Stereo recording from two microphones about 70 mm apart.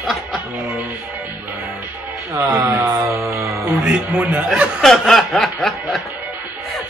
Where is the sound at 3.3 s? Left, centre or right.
Right.